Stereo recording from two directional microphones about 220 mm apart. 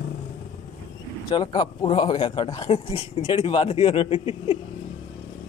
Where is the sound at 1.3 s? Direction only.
20° left (ahead or behind).